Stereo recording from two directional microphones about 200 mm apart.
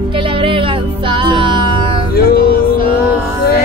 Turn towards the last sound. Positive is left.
turn(degrees=50)  # may be behind; listen again after turning